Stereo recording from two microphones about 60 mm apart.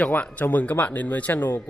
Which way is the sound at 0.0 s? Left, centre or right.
Left.